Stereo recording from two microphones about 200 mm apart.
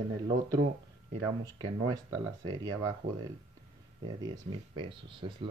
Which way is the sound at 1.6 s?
20° right (ahead or behind).